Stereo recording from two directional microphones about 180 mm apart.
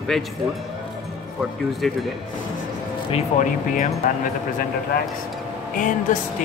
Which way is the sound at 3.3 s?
45° left (ahead or behind).